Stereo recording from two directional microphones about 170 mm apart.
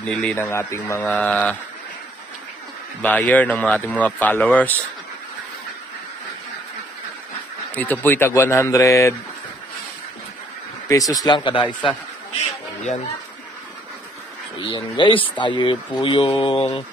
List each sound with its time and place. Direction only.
0.0 s speech: 5° left (ahead or behind)
3.0 s speech: 10° left (ahead or behind)
7.7 s speech: 10° left (ahead or behind)
10.9 s speech: 20° left (ahead or behind)
14.6 s speech: 30° left (ahead or behind)